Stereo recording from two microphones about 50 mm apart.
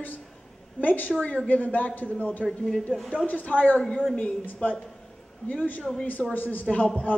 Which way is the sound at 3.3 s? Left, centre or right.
Left.